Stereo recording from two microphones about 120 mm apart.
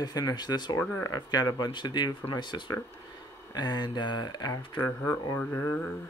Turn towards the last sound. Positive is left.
turn(degrees=25)  # may be behind; listen again after turning